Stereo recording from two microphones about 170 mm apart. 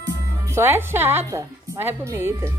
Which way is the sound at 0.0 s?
15° right (ahead or behind).